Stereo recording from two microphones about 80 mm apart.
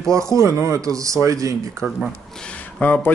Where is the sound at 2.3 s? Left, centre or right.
Centre.